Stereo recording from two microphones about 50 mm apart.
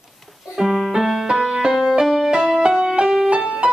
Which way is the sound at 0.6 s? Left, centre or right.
Centre.